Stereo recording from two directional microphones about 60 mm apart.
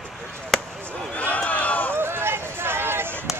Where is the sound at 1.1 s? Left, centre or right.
Left.